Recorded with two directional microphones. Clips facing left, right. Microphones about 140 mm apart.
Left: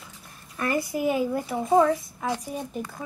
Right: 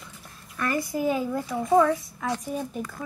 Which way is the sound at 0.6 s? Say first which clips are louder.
Left 1 dB; 20° left (ahead or behind).